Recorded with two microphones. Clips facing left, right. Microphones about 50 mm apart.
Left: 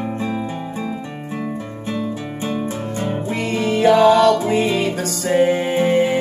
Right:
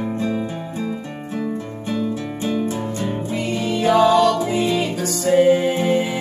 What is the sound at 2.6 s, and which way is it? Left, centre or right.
Music, left.